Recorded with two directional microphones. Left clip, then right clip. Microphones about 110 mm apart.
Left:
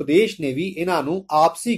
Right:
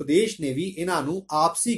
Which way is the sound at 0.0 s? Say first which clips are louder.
Left 4 dB; 30° left (ahead or behind).